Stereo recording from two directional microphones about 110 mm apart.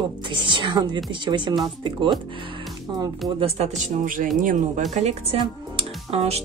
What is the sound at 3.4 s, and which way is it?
Speech, 75° right (ahead or behind).